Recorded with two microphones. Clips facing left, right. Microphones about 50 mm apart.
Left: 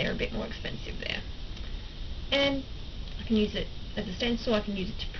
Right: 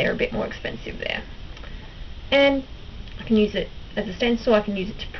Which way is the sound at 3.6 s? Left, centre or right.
Right.